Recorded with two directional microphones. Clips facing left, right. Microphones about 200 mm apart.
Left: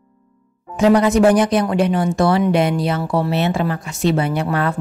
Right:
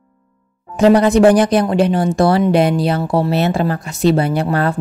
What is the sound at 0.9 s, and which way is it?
Speech, 30° right (ahead or behind).